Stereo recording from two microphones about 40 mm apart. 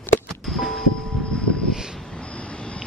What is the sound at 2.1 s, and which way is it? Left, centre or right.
Vehicle, left.